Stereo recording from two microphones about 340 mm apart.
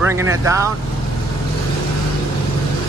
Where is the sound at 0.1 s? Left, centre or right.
Centre.